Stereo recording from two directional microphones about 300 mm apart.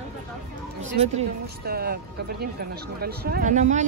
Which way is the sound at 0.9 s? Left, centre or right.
Right.